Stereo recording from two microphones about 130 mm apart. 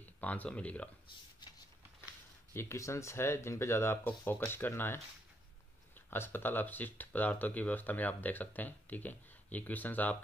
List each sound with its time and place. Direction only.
0.2 s speech: 10° left (ahead or behind)
2.5 s speech: 20° left (ahead or behind)